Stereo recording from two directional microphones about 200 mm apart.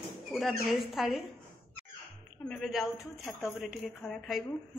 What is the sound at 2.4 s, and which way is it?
A woman's voice, 5° left (ahead or behind).